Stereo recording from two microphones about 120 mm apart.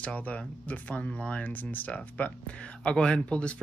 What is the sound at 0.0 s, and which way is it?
Speech, 15° left (ahead or behind).